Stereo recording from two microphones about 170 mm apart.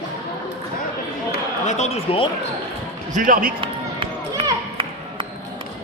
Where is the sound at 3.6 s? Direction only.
30° right (ahead or behind).